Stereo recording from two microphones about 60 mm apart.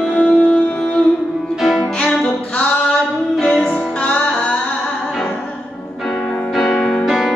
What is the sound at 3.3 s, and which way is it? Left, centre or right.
Music, centre.